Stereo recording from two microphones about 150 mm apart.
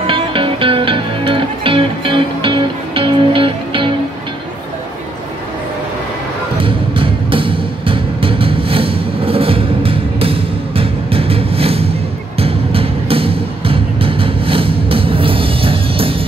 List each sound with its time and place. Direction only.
0.0 s music: 35° right (ahead or behind)
6.6 s music: 35° right (ahead or behind)